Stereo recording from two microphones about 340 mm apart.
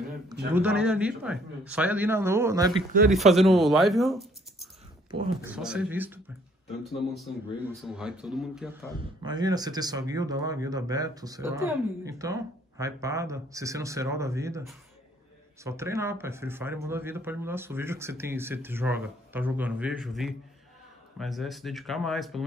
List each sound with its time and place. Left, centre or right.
0.5 s a man's voice: centre
5.1 s speech: centre
5.5 s a man's voice: centre
9.2 s a man's voice: centre